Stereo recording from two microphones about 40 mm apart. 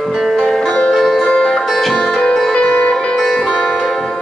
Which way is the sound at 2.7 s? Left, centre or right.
Left.